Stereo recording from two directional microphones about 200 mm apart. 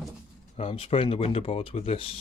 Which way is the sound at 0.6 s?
25° left (ahead or behind).